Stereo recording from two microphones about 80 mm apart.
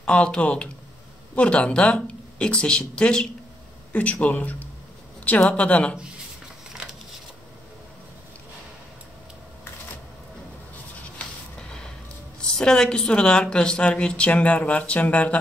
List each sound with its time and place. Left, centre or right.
0.0 s speech: centre
6.7 s a sound: centre
12.5 s speech: centre